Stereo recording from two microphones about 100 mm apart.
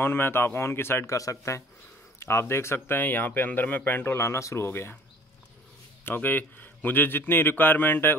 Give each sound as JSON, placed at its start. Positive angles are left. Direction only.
{"t": 0.0, "sound": "speech", "side_deg": 20}
{"t": 6.0, "sound": "speech", "side_deg": 20}